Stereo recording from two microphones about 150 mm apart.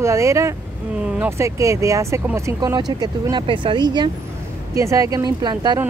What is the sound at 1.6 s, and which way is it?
Speech, 20° right (ahead or behind).